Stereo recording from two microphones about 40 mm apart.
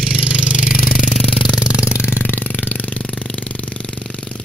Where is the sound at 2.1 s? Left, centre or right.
Left.